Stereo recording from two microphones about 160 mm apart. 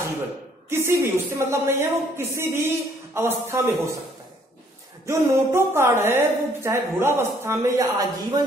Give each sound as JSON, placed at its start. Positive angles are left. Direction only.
{"t": 0.7, "sound": "a woman's voice", "side_deg": -15}
{"t": 5.0, "sound": "a woman's voice", "side_deg": -15}